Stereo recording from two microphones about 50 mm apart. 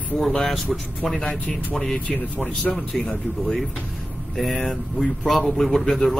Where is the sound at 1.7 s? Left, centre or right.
Centre.